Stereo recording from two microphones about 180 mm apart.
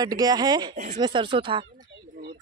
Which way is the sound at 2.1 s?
55° right (ahead or behind).